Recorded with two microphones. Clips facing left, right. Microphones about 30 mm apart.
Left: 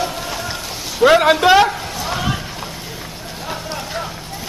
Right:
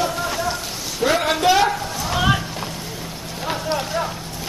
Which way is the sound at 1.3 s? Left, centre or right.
Left.